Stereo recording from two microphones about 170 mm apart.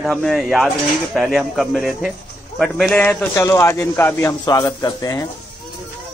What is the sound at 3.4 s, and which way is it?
Speech, 15° left (ahead or behind).